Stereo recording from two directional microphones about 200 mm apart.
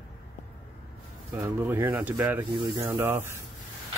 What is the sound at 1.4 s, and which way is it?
Speech, 10° right (ahead or behind).